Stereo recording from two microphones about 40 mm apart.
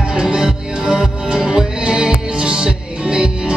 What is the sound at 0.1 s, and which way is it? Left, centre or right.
Music, centre.